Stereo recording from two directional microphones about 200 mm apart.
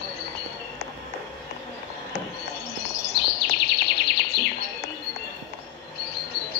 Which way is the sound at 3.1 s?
60° left (ahead or behind).